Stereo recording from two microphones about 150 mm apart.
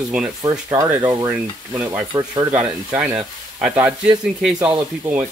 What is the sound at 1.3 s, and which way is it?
Speech, 10° right (ahead or behind).